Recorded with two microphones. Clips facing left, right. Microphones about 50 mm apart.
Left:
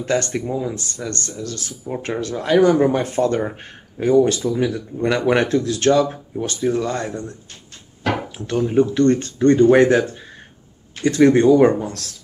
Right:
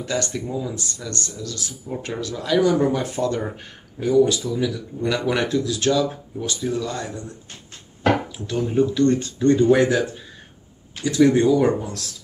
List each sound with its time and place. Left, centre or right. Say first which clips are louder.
0.0 s speech: left 5 dB; left
8.4 s speech: left 3 dB; left